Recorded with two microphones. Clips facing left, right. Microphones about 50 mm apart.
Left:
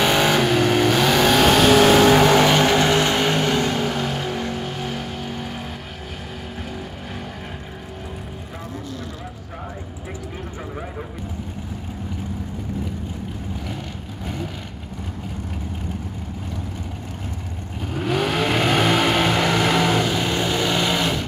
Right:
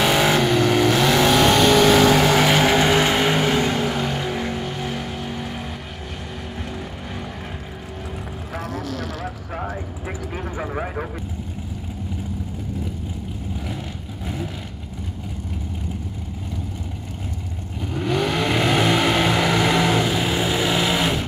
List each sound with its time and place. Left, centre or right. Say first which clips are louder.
0.0 s vehicle: even; centre
0.4 s vehicle: even; centre
8.7 s vehicle: right 3 dB; right
14.2 s vehicle: even; centre
17.9 s vehicle: even; centre